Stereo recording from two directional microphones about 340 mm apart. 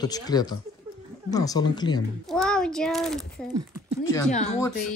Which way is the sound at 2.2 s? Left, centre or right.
Centre.